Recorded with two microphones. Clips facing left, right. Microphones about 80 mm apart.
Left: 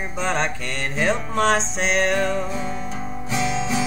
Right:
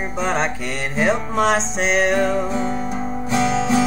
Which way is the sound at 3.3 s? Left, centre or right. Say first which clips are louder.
Right 5 dB; right.